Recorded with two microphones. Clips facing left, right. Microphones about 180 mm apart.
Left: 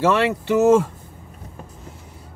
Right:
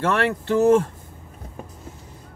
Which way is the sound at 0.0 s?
80° left.